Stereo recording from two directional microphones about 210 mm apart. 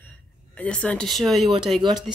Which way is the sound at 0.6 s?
5° left (ahead or behind).